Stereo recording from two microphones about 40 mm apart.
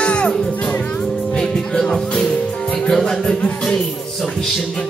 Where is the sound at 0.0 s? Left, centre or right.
Left.